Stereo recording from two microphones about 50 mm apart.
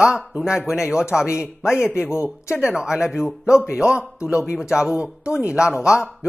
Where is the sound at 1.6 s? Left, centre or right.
Left.